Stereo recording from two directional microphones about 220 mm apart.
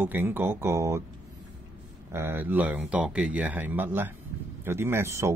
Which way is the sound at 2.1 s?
10° right (ahead or behind).